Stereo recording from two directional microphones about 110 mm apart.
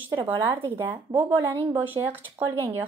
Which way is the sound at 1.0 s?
20° right (ahead or behind).